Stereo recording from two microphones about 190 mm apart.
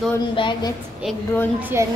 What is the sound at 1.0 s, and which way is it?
Speech, 5° right (ahead or behind).